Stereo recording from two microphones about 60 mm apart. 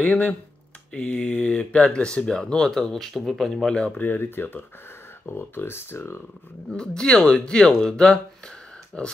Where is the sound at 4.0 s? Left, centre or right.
Left.